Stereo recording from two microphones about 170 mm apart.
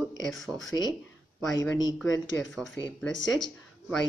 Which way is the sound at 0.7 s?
25° left (ahead or behind).